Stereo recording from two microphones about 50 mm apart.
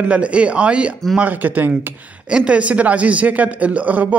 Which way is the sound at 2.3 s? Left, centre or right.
Right.